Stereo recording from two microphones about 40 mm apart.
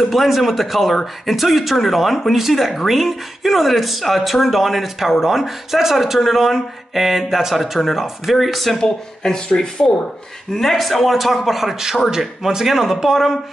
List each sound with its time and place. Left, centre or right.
0.1 s speech: centre
8.8 s speech: centre
10.5 s speech: centre